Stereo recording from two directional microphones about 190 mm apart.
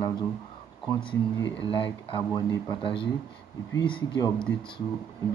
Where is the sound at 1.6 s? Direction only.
25° left (ahead or behind).